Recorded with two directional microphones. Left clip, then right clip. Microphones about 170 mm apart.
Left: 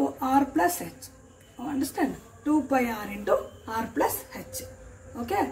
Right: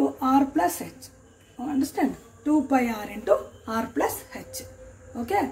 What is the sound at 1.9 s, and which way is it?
A woman's voice, 25° right (ahead or behind).